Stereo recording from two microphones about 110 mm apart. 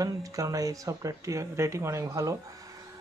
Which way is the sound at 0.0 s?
30° right (ahead or behind).